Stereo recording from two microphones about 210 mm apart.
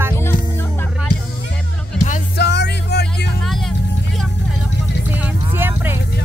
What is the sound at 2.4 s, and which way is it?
Music, 55° left (ahead or behind).